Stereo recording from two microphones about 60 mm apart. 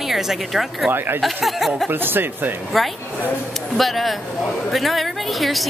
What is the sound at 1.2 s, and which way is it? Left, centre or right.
Speech, centre.